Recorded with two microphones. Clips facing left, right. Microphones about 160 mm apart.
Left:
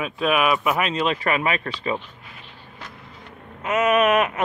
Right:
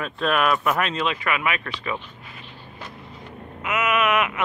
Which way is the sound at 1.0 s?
35° left (ahead or behind).